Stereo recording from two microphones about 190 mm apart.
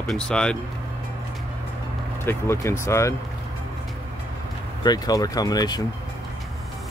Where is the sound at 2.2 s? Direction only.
10° left (ahead or behind).